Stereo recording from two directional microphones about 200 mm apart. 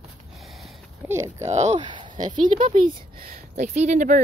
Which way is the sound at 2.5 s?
40° right (ahead or behind).